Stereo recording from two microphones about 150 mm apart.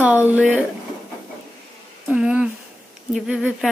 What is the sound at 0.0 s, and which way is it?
Speech, 10° right (ahead or behind).